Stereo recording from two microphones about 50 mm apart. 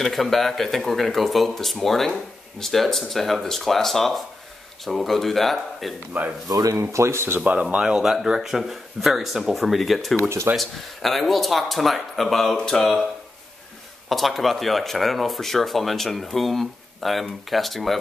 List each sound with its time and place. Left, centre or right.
0.0 s speech: centre
6.7 s speech: right
7.8 s speech: centre
14.0 s speech: centre